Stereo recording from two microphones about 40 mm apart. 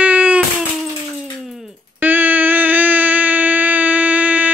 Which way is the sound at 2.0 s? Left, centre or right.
Right.